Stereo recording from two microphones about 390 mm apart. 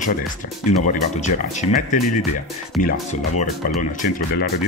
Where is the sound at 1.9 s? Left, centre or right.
Centre.